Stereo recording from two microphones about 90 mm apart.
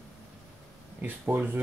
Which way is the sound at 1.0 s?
20° right (ahead or behind).